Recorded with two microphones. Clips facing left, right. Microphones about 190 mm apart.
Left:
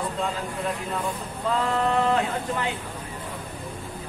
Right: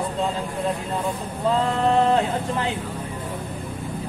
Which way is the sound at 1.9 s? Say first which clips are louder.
Right 6 dB; 30° right (ahead or behind).